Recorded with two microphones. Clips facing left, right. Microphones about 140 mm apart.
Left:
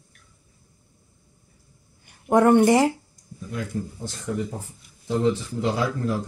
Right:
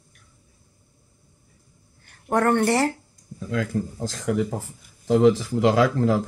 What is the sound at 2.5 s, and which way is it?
Speech, 15° left (ahead or behind).